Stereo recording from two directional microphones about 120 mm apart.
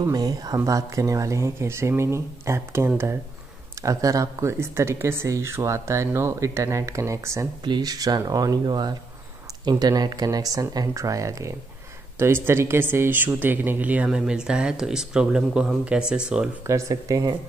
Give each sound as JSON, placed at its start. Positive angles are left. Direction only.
{"t": 0.0, "sound": "speech", "side_deg": -30}
{"t": 7.6, "sound": "speech", "side_deg": -35}
{"t": 16.6, "sound": "speech", "side_deg": -25}